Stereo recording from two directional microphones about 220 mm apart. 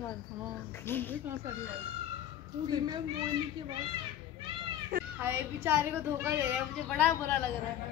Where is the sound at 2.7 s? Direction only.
20° right (ahead or behind).